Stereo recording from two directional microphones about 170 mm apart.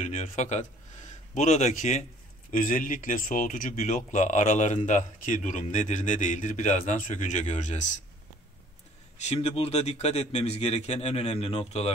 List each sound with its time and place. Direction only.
0.0 s speech: 40° left (ahead or behind)
9.2 s speech: 40° left (ahead or behind)